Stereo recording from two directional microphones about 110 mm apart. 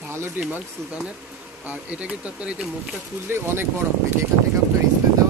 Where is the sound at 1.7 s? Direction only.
15° right (ahead or behind).